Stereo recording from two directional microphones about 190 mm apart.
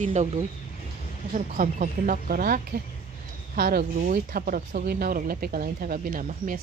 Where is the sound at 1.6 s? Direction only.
45° right (ahead or behind).